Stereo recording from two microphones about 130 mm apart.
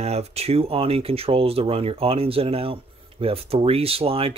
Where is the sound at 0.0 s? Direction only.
55° right (ahead or behind).